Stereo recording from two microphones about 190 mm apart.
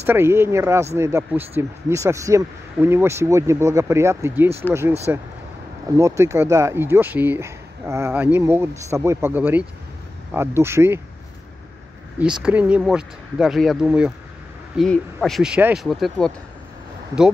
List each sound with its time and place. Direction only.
0.0 s speech: 15° right (ahead or behind)
12.2 s speech: 5° right (ahead or behind)